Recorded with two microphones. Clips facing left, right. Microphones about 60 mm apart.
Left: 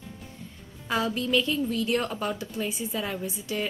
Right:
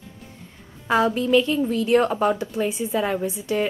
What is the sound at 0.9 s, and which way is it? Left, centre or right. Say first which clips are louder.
A woman's voice: right 7 dB; centre.